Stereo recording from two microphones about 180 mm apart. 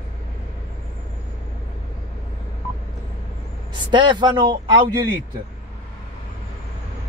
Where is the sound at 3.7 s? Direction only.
25° right (ahead or behind).